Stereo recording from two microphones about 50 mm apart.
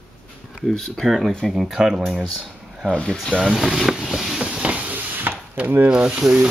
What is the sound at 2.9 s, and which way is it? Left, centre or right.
Speech, centre.